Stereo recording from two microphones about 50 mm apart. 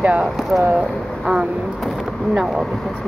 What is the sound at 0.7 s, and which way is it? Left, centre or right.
Speech, centre.